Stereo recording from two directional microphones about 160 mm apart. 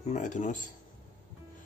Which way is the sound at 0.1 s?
50° left (ahead or behind).